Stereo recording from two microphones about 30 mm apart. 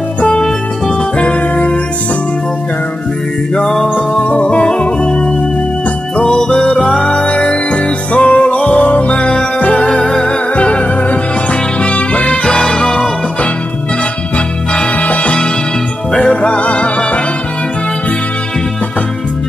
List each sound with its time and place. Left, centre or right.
1.1 s music: left
3.5 s music: left
6.7 s music: left
9.8 s music: left
10.2 s music: left
12.7 s music: left
14.7 s music: left
15.0 s music: left
16.2 s music: left